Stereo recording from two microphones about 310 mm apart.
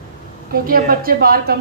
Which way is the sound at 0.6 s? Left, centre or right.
Right.